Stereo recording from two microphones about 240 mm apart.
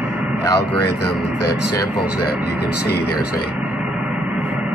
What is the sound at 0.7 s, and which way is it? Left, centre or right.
A man's voice, left.